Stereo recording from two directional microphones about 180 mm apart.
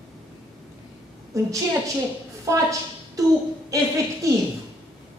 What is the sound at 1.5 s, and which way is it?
A woman's voice, 15° right (ahead or behind).